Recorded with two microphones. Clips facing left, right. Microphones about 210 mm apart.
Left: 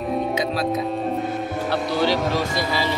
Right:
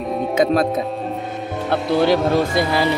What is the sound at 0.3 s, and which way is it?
Speech, 50° right (ahead or behind).